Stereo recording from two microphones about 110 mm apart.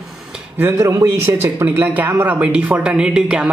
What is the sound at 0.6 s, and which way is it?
A man's voice, 25° right (ahead or behind).